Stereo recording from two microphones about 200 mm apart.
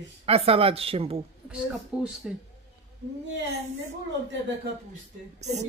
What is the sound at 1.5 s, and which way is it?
Speech, 5° right (ahead or behind).